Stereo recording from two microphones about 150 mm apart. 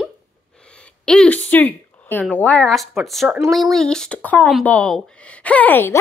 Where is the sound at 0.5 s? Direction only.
5° left (ahead or behind).